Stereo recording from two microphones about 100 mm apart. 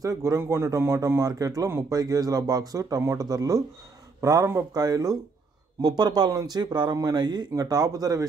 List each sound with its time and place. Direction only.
0.0 s a man's voice: 35° right (ahead or behind)